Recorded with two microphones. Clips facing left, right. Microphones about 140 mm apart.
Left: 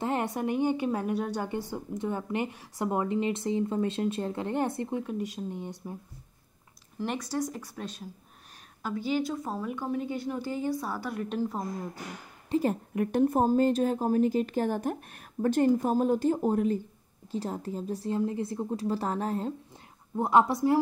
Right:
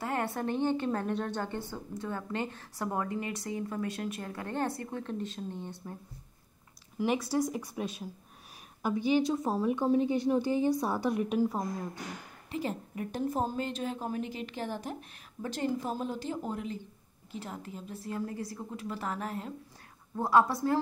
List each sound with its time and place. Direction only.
0.0 s a woman's voice: 20° left (ahead or behind)
7.0 s a woman's voice: 5° right (ahead or behind)
11.2 s speech: 5° right (ahead or behind)
12.4 s a woman's voice: 40° left (ahead or behind)
12.9 s a woman's voice: 60° left (ahead or behind); by 16.8 s 45° left (ahead or behind)
17.3 s speech: 35° left (ahead or behind)
20.2 s speech: 20° left (ahead or behind)